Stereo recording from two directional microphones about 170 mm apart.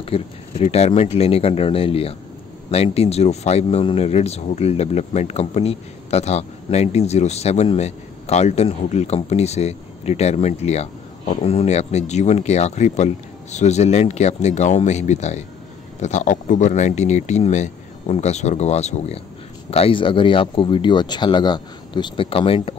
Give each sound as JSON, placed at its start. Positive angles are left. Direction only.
{"t": 0.0, "sound": "speech", "side_deg": 35}